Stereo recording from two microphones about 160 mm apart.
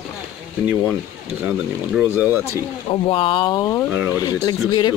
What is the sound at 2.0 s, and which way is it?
Speech, 10° right (ahead or behind).